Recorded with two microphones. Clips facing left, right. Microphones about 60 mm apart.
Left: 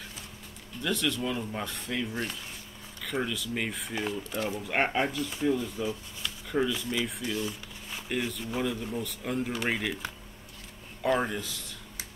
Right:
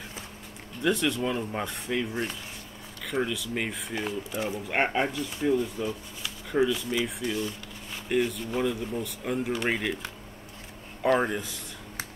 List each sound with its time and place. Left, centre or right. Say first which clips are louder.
0.8 s speech: right 4 dB; right
6.2 s a sound: right 3 dB; centre
7.2 s speech: right 2 dB; centre
11.1 s speech: right 3 dB; centre